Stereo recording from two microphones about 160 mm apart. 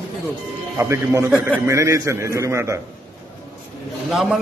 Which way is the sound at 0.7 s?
15° right (ahead or behind).